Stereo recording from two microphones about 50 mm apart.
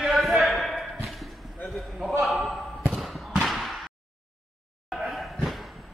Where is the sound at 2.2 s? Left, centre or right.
Centre.